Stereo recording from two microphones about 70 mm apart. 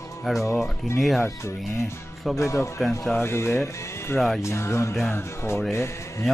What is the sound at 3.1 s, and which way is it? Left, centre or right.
Speech, left.